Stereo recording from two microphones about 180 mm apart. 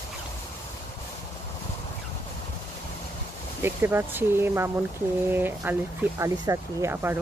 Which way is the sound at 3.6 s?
10° right (ahead or behind).